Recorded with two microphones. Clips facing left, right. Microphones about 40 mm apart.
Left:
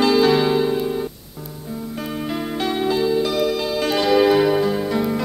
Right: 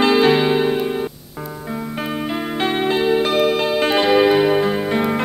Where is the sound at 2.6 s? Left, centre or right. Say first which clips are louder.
Right 2 dB; right.